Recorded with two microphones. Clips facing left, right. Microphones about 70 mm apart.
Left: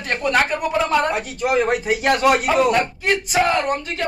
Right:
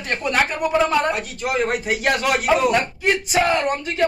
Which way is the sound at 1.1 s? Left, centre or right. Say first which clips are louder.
Left 2 dB; left.